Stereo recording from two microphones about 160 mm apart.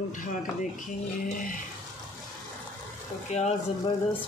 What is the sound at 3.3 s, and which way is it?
Speech, 45° left (ahead or behind).